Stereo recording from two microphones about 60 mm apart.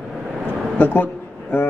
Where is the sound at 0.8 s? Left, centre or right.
Left.